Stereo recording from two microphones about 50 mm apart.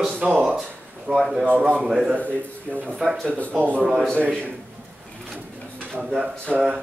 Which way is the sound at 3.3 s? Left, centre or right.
Left.